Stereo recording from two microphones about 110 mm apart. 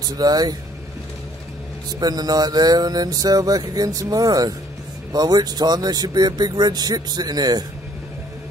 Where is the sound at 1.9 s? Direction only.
35° right (ahead or behind).